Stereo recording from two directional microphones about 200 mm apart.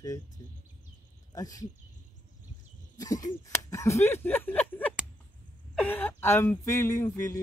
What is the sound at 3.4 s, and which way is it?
Speech, 15° left (ahead or behind).